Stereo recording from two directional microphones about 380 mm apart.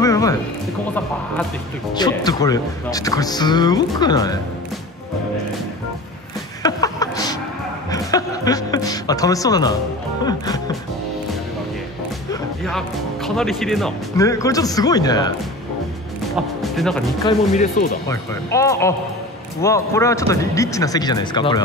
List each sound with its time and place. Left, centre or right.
0.0 s music: centre
2.0 s speech: centre
6.6 s a sound: centre
7.9 s music: centre
10.2 s speech: centre
12.3 s speech: centre
16.6 s speech: centre
17.6 s speech: left
18.0 s speech: centre